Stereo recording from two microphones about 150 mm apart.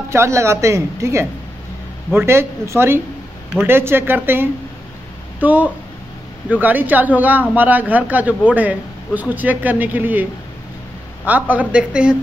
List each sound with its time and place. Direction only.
0.1 s a woman's voice: 20° right (ahead or behind)
11.2 s a man's voice: 10° right (ahead or behind)